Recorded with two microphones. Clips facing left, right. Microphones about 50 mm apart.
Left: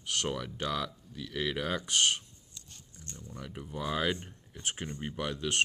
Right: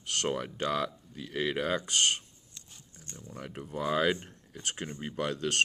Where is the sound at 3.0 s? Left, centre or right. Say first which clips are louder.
Right 2 dB; right.